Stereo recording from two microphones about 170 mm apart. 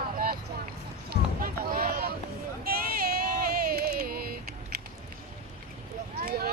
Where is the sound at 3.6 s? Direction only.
65° right (ahead or behind).